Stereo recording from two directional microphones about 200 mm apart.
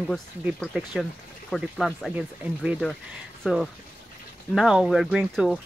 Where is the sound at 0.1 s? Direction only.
Centre (ahead or behind).